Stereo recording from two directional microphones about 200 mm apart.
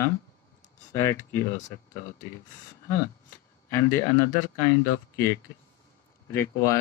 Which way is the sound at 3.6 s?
10° left (ahead or behind).